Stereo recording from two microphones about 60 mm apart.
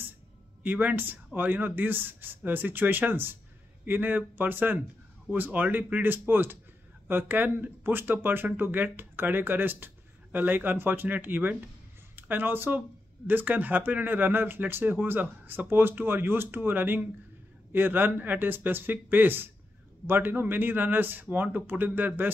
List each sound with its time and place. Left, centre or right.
0.7 s speech: right